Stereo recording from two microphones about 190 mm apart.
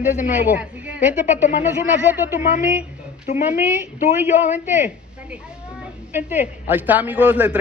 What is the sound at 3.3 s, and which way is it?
Speech, 35° left (ahead or behind).